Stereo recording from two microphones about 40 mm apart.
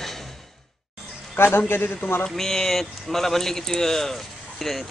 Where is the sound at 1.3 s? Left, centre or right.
Left.